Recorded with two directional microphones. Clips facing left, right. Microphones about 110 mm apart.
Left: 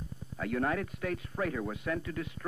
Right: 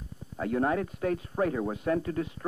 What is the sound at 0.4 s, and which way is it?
Speech, 25° right (ahead or behind).